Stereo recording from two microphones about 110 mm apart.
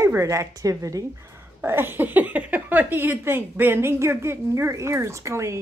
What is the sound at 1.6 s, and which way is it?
Speech, 20° right (ahead or behind).